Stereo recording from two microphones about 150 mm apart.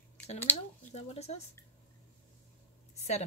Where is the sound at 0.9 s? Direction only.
45° left (ahead or behind).